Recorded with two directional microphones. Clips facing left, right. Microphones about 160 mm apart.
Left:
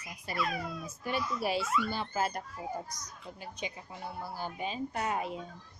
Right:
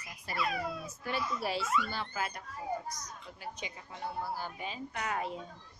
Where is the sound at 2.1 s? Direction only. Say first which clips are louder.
Left 5 dB; 40° left (ahead or behind).